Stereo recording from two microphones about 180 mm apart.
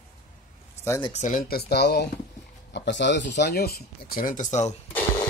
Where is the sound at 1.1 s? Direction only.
45° left (ahead or behind).